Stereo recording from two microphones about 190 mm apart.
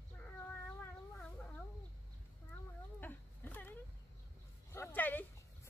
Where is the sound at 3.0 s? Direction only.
10° left (ahead or behind).